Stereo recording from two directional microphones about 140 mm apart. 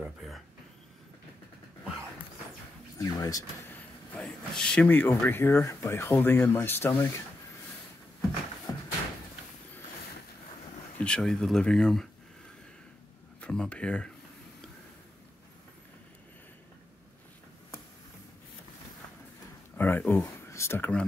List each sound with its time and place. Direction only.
3.0 s speech: 25° left (ahead or behind)
4.2 s speech: 5° left (ahead or behind)
8.7 s a sound: 25° left (ahead or behind)
11.0 s speech: 5° left (ahead or behind)
13.4 s speech: 5° left (ahead or behind)
19.8 s speech: 15° left (ahead or behind)